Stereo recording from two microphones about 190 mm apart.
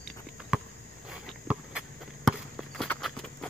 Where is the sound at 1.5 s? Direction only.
5° right (ahead or behind).